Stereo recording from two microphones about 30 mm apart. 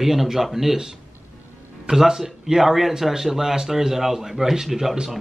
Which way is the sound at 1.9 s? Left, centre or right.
Centre.